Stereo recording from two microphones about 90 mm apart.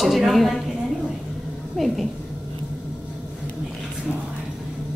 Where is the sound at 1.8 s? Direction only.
Centre (ahead or behind).